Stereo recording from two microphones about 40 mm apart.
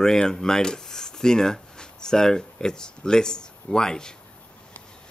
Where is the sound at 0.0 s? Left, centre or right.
Centre.